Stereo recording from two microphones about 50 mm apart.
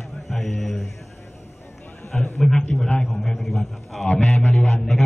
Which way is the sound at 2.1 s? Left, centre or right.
Centre.